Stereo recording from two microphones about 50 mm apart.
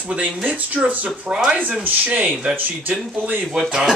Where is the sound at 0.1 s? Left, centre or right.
Right.